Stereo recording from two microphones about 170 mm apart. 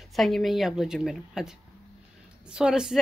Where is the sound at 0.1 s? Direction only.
Centre (ahead or behind).